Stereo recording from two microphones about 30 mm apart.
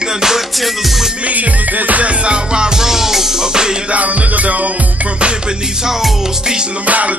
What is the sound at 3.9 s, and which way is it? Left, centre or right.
Music, right.